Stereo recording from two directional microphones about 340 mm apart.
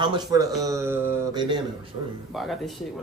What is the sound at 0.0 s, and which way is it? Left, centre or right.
Mantra, centre.